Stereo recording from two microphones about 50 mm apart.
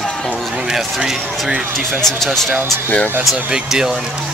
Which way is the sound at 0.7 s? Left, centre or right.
Centre.